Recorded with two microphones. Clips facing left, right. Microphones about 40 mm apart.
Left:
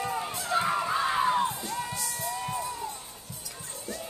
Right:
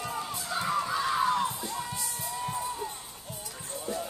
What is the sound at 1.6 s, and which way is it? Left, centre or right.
Music, left.